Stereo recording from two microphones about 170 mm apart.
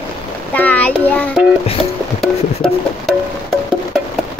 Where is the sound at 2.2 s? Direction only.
5° left (ahead or behind).